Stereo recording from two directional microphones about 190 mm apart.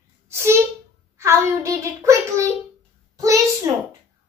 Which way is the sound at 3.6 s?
15° right (ahead or behind).